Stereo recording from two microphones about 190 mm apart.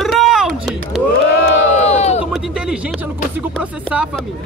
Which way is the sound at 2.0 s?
35° left (ahead or behind).